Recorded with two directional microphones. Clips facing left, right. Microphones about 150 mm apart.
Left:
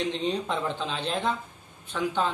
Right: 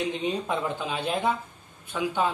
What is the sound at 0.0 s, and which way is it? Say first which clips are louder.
Speech: even; 10° right (ahead or behind).